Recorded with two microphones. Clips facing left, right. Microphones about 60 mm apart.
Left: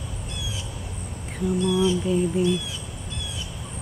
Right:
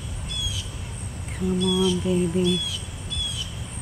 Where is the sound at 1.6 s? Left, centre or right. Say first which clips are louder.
Left 1 dB; left.